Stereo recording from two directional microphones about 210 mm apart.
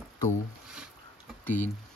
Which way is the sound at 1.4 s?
10° left (ahead or behind).